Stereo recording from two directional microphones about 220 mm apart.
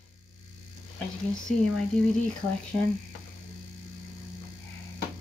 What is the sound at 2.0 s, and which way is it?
Speech, 5° left (ahead or behind).